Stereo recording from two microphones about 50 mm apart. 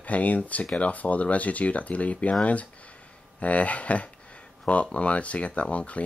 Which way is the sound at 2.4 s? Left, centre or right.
Left.